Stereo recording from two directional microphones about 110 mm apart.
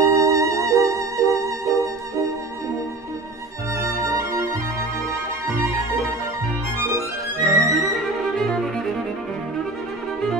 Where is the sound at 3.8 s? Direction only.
30° right (ahead or behind).